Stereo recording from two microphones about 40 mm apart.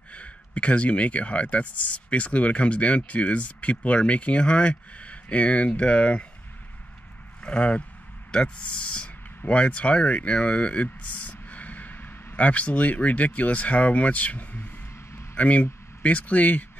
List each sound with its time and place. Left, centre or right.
0.1 s speech: left
7.4 s speech: left
12.4 s speech: left